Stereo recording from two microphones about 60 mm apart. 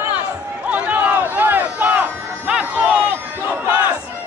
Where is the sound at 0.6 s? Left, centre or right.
Right.